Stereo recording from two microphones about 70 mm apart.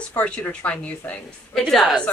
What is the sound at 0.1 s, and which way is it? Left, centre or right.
Speech, centre.